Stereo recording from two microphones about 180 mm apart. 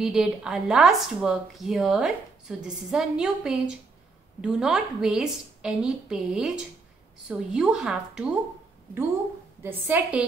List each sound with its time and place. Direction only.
0.0 s a woman's voice: 5° right (ahead or behind)
9.6 s a woman's voice: 10° right (ahead or behind)